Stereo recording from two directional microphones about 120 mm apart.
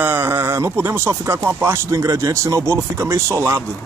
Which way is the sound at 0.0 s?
15° right (ahead or behind).